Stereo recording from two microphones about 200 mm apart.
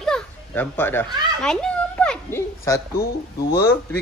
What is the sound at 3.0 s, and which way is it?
Speech, 50° left (ahead or behind).